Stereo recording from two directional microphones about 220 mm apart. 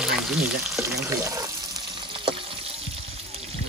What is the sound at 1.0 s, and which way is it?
Frying, 15° right (ahead or behind).